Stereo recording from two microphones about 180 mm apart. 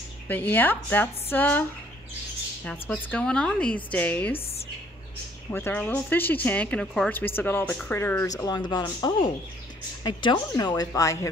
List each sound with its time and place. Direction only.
0.3 s speech: 10° left (ahead or behind)
4.3 s speech: 35° left (ahead or behind)
5.5 s a woman's voice: 10° left (ahead or behind)
10.0 s a woman's voice: 25° left (ahead or behind)